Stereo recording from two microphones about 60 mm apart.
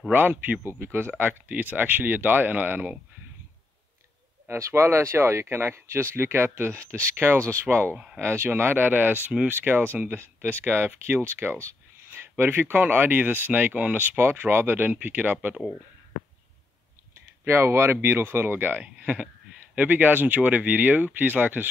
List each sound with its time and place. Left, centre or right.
0.1 s speech: right
4.5 s speech: right
14.1 s speech: right
17.5 s speech: right